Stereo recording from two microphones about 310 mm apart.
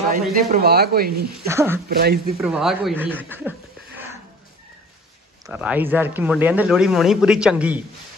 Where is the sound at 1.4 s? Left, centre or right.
Centre.